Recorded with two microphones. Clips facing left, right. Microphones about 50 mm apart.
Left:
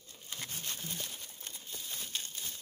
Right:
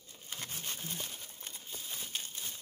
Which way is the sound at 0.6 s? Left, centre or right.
Centre.